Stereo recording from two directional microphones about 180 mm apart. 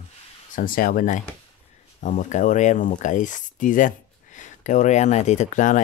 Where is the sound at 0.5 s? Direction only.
50° left (ahead or behind).